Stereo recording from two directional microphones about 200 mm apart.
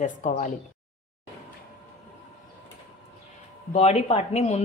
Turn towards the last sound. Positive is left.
turn(degrees=30)  # may be behind; listen again after turning